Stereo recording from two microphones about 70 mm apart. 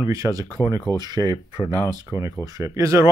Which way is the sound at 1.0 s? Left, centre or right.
Right.